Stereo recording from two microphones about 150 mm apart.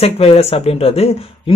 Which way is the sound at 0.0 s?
40° left (ahead or behind).